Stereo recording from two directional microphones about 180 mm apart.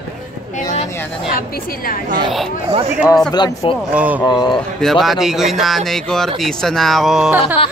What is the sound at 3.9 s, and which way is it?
Speech, 10° right (ahead or behind).